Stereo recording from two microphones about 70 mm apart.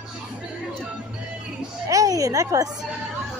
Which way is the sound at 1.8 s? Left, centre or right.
Right.